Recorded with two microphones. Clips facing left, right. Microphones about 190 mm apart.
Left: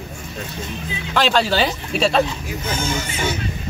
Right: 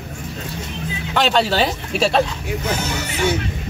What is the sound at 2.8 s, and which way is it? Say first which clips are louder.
Speech: even; 70° right (ahead or behind).